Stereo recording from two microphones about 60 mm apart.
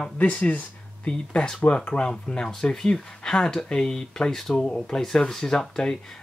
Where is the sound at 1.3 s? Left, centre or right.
Centre.